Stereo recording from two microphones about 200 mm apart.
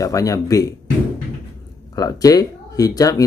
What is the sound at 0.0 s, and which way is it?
Speech, 15° left (ahead or behind).